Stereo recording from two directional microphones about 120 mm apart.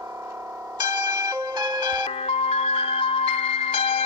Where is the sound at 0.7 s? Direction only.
35° right (ahead or behind).